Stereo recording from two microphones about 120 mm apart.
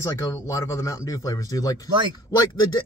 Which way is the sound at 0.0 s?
30° left (ahead or behind).